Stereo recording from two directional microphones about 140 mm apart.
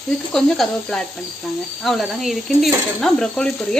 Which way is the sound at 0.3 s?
5° left (ahead or behind).